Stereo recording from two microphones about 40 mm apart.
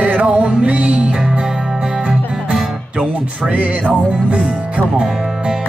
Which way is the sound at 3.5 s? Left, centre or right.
Right.